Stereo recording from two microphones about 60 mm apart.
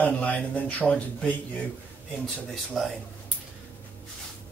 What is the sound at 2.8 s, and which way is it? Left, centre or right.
Speech, centre.